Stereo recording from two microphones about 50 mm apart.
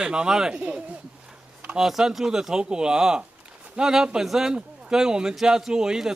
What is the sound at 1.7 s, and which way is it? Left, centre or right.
A man's voice, centre.